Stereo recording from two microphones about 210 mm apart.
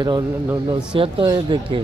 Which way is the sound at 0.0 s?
20° right (ahead or behind).